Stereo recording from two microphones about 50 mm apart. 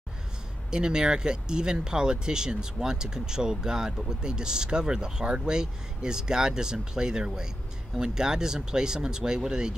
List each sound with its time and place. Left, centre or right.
0.7 s speech: centre